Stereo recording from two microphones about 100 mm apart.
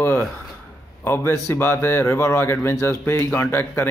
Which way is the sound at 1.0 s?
25° left (ahead or behind).